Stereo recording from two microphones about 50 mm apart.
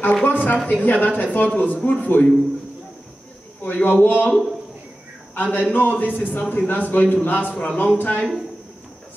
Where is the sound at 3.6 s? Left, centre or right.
Left.